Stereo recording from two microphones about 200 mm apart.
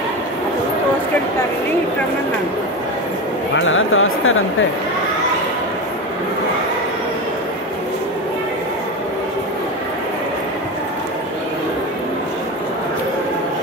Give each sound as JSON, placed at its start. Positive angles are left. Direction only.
{"t": 3.5, "sound": "speech", "side_deg": 75}